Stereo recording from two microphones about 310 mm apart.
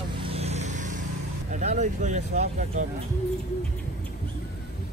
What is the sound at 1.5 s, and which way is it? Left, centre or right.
Speech, right.